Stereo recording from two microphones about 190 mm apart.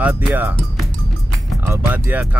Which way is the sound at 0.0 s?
10° right (ahead or behind).